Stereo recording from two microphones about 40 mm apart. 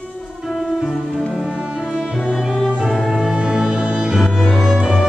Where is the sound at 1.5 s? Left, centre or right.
Right.